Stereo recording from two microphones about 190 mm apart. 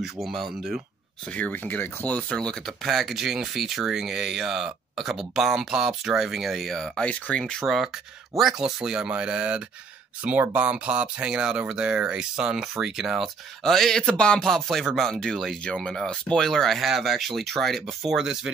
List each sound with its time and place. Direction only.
0.0 s speech: centre (ahead or behind)